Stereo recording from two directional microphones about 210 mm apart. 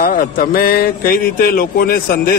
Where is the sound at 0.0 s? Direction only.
40° left (ahead or behind).